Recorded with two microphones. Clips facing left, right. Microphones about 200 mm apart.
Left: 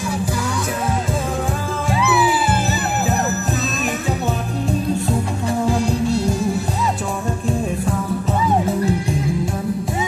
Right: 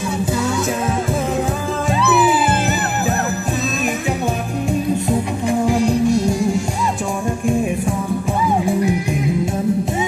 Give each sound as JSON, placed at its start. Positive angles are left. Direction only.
{"t": 4.6, "sound": "music", "side_deg": -15}
{"t": 8.6, "sound": "music", "side_deg": -15}